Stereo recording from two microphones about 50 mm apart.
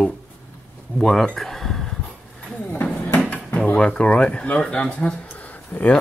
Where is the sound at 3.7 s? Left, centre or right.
Centre.